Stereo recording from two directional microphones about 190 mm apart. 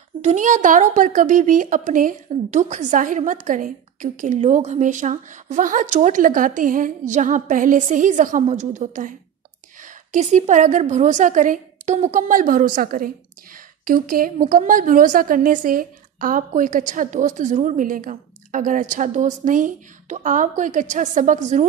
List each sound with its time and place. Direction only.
0.2 s a woman's voice: 40° right (ahead or behind)